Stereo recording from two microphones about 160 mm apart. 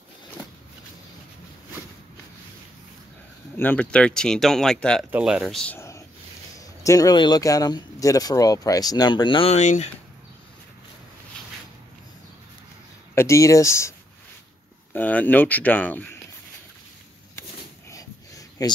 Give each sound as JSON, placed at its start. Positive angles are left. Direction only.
{"t": 3.5, "sound": "speech", "side_deg": 10}
{"t": 5.8, "sound": "a sound", "side_deg": 20}
{"t": 6.8, "sound": "speech", "side_deg": 20}
{"t": 9.5, "sound": "speech", "side_deg": 45}
{"t": 13.1, "sound": "speech", "side_deg": 15}
{"t": 17.4, "sound": "a sound", "side_deg": 15}
{"t": 18.6, "sound": "speech", "side_deg": 25}